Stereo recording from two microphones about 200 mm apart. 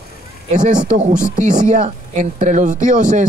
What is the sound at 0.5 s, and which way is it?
Speech, 40° right (ahead or behind).